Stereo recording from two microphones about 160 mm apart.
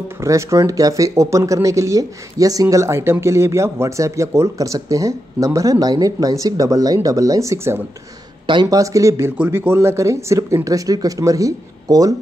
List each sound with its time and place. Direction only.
0.2 s speech: 20° right (ahead or behind)